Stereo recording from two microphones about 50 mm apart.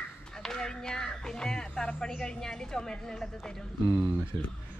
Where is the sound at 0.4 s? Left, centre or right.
Centre.